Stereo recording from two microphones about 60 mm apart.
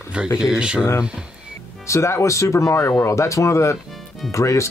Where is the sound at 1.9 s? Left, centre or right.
Left.